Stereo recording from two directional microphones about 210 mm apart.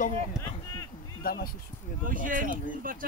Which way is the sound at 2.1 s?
40° right (ahead or behind).